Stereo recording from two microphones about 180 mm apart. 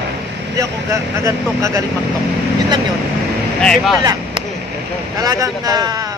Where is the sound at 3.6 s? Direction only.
5° left (ahead or behind).